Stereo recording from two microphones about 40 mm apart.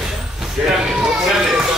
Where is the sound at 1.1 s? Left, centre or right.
Centre.